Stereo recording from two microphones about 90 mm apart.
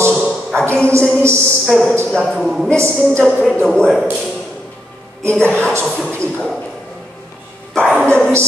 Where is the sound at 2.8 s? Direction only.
30° right (ahead or behind).